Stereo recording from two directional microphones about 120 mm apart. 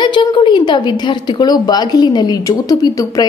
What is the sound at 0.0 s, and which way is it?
A woman's voice, 40° left (ahead or behind).